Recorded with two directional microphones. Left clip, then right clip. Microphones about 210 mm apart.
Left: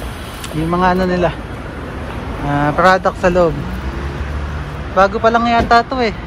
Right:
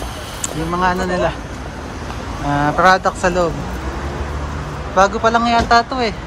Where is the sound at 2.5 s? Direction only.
10° right (ahead or behind).